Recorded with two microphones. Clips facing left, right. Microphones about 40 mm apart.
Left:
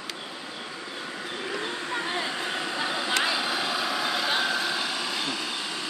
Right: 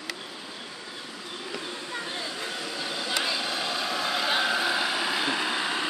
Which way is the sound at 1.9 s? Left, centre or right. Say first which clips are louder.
Left 4 dB; left.